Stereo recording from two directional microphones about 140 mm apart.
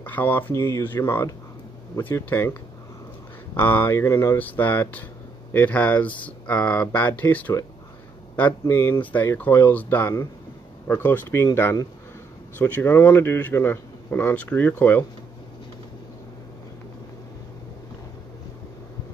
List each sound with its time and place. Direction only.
0.0 s a man's voice: 15° left (ahead or behind)
3.5 s a man's voice: 15° left (ahead or behind)